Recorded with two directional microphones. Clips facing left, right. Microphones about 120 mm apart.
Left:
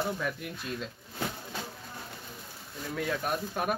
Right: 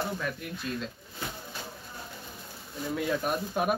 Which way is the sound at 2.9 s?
5° right (ahead or behind).